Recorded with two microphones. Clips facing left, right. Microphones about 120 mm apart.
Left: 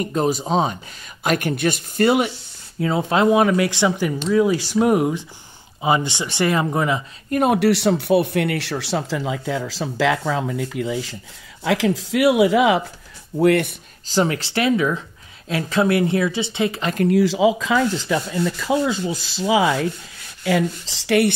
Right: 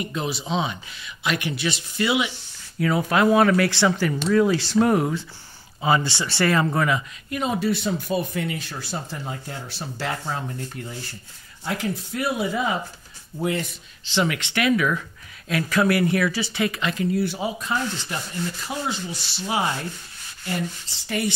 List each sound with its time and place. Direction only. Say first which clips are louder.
0.0 s speech: left 8 dB; 45° left (ahead or behind)
2.8 s speech: left 2 dB; 25° left (ahead or behind)
7.2 s speech: left 9 dB; 50° left (ahead or behind)
7.5 s speech: left 7 dB; 75° left (ahead or behind)
13.4 s speech: left 10 dB; 65° left (ahead or behind)
14.0 s speech: left 4 dB; 40° left (ahead or behind)
16.8 s speech: left 5 dB; 50° left (ahead or behind)
17.1 s speech: left 9 dB; 90° left
20.4 s speech: left 9 dB; 90° left